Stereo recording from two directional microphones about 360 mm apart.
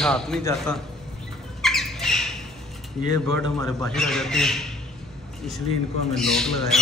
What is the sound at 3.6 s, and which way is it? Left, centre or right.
Speech, centre.